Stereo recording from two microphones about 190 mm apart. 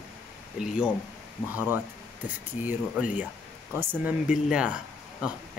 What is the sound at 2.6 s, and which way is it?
Speech, 10° right (ahead or behind).